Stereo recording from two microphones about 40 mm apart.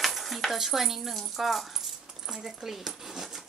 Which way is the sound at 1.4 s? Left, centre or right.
Centre.